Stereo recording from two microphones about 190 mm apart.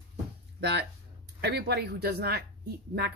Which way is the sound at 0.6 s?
60° right (ahead or behind).